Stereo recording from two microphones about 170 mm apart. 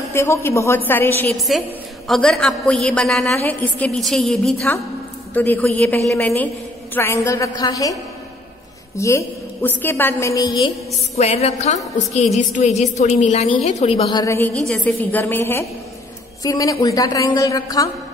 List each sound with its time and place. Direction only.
0.1 s a woman's voice: 15° left (ahead or behind)
11.1 s a woman's voice: 40° left (ahead or behind)
14.0 s a woman's voice: 20° left (ahead or behind)
14.6 s a woman's voice: 5° left (ahead or behind); by 17.8 s 20° left (ahead or behind)